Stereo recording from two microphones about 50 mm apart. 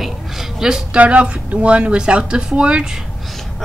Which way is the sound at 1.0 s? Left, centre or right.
Right.